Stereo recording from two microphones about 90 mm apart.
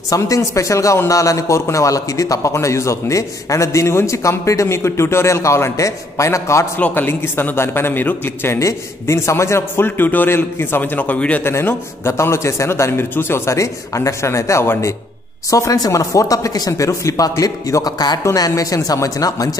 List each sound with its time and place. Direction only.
0.1 s a man's voice: 35° left (ahead or behind)
8.5 s a man's voice: 35° left (ahead or behind); by 11.4 s 15° left (ahead or behind)
11.4 s a man's voice: 30° left (ahead or behind); by 18.2 s 50° left (ahead or behind)
18.2 s a man's voice: 35° left (ahead or behind)